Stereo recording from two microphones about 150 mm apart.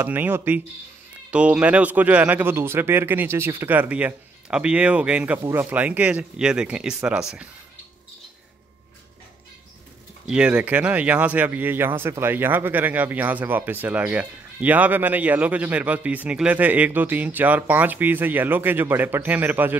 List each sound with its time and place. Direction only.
0.0 s speech: 15° right (ahead or behind)
10.2 s speech: 5° right (ahead or behind)